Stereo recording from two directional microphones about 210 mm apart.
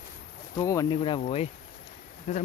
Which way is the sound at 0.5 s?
15° left (ahead or behind).